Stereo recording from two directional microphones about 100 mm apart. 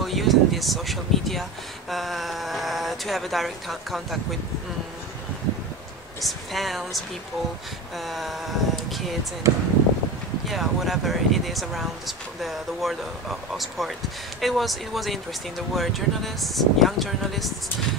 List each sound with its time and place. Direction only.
0.0 s speech: centre (ahead or behind)
6.2 s speech: centre (ahead or behind)
8.0 s speech: centre (ahead or behind)
9.5 s speech: 30° right (ahead or behind)
10.5 s speech: centre (ahead or behind)